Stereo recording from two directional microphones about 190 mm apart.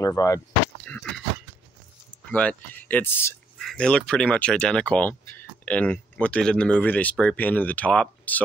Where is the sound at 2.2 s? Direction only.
5° left (ahead or behind).